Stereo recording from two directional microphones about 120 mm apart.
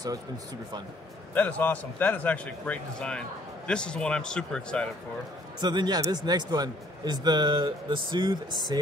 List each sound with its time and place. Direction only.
1.3 s a man's voice: 15° left (ahead or behind)
5.6 s a man's voice: 35° right (ahead or behind)